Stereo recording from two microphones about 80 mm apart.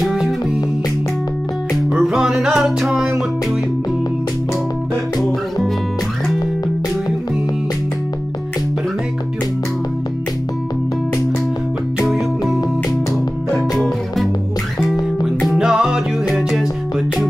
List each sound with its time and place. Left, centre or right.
0.0 s music: centre
1.9 s music: centre
13.6 s music: centre